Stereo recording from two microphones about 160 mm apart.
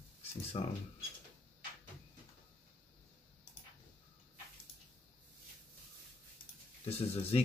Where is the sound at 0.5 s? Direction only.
40° left (ahead or behind).